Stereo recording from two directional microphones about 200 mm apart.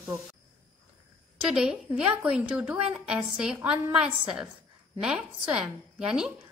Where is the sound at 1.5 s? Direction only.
5° right (ahead or behind).